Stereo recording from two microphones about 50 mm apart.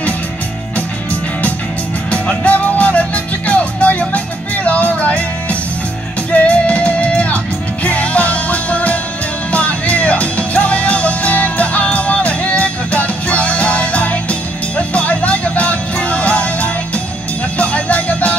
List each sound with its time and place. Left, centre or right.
2.0 s music: left